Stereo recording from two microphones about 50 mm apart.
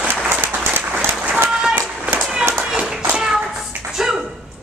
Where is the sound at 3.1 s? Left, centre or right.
Centre.